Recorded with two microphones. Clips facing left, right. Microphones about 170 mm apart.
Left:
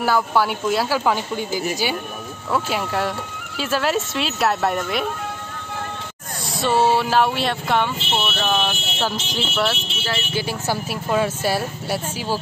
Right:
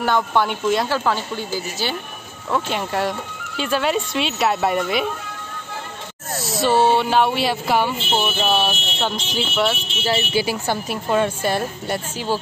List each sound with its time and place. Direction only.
0.0 s speech: 5° left (ahead or behind)
2.5 s speech: centre (ahead or behind)
6.4 s speech: centre (ahead or behind)
10.0 s speech: 15° right (ahead or behind)
10.7 s speech: 5° left (ahead or behind)